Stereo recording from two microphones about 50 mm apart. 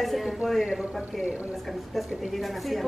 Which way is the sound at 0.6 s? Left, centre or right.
Centre.